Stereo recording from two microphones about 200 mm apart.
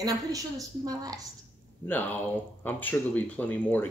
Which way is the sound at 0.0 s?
20° right (ahead or behind).